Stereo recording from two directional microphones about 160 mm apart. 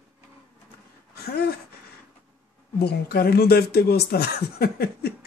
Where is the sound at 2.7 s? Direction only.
80° left.